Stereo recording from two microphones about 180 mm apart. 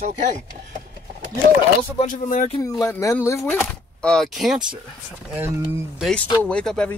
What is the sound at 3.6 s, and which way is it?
Speech, 5° left (ahead or behind).